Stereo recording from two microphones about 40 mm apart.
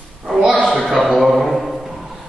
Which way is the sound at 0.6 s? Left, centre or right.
Centre.